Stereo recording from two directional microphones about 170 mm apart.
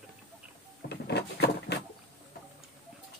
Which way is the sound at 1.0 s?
80° left.